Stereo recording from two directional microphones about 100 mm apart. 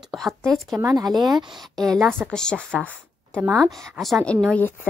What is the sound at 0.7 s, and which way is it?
Speech, 35° right (ahead or behind).